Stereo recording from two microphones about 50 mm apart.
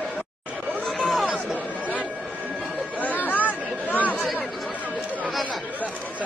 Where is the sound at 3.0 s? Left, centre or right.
Left.